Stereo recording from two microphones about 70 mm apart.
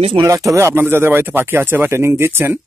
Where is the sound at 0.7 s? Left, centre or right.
Right.